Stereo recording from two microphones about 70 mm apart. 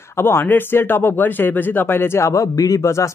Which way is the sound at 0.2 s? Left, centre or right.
Left.